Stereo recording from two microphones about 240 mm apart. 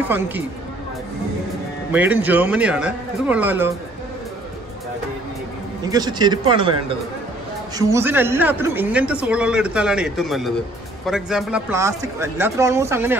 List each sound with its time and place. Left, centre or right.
1.9 s a man's voice: centre
5.9 s a man's voice: centre
7.7 s a man's voice: centre